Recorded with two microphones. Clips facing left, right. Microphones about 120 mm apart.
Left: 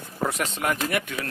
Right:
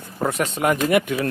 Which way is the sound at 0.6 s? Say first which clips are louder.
Right 9 dB; 10° right (ahead or behind).